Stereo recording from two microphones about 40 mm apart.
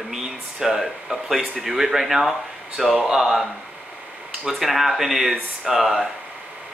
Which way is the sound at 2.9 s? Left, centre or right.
Centre.